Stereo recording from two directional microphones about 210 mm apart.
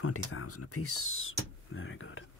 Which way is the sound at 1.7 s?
70° left (ahead or behind).